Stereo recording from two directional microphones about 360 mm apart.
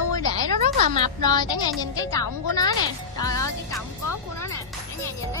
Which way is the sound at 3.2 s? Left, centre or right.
Centre.